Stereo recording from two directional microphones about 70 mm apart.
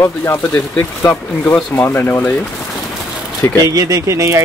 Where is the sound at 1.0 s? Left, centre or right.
Left.